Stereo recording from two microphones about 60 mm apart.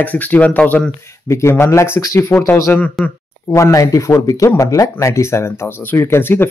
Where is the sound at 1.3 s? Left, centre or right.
Left.